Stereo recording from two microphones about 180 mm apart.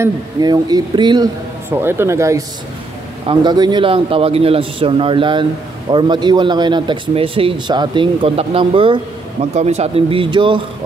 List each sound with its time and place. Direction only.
0.0 s a man's voice: 20° right (ahead or behind)
1.7 s a man's voice: 15° right (ahead or behind)